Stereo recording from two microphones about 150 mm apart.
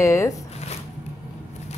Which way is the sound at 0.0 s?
20° left (ahead or behind).